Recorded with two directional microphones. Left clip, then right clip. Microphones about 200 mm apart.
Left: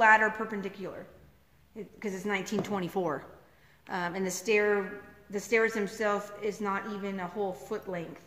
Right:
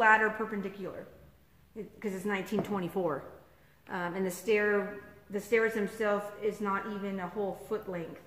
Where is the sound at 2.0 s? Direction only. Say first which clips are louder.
Left 2 dB; 30° left (ahead or behind).